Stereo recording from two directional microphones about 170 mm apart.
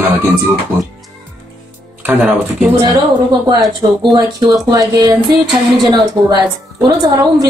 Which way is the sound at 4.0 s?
25° right (ahead or behind).